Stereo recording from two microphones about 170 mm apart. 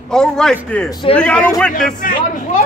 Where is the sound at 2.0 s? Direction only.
55° left (ahead or behind).